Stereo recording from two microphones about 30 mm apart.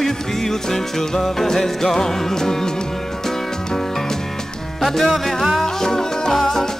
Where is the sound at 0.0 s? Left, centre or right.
Centre.